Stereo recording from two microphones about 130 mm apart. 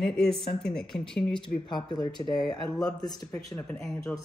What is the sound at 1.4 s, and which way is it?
Speech, 35° left (ahead or behind).